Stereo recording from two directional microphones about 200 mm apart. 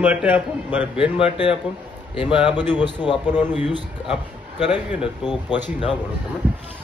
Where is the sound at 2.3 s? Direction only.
5° right (ahead or behind).